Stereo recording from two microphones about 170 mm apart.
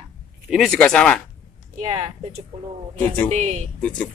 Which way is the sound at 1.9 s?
35° right (ahead or behind).